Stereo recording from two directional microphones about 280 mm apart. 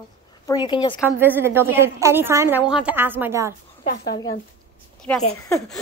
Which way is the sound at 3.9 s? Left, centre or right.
Left.